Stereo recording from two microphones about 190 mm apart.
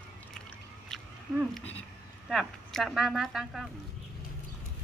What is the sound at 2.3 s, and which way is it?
Speech, centre (ahead or behind).